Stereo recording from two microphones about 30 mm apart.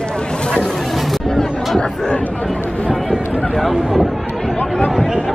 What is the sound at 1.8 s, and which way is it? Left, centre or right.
Speech, left.